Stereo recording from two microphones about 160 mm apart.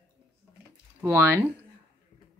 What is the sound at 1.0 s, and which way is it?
Speech, 15° right (ahead or behind).